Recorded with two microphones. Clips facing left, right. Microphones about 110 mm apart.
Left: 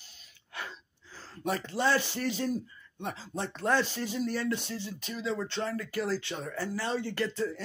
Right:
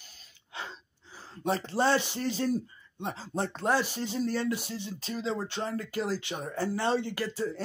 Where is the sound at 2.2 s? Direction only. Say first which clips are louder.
Right 2 dB; 35° right (ahead or behind).